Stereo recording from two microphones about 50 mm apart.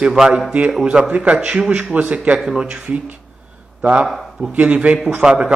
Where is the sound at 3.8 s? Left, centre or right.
Right.